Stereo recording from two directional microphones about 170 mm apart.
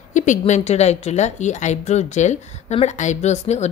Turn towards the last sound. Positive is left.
turn(degrees=40)  # may be behind; listen again after turning